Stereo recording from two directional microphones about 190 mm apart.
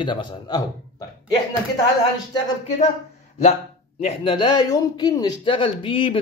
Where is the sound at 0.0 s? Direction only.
25° left (ahead or behind).